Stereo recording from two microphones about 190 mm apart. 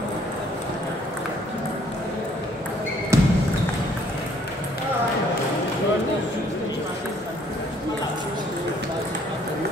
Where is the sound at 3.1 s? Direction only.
15° right (ahead or behind).